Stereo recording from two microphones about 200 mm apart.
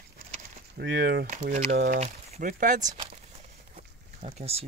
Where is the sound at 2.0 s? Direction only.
40° right (ahead or behind).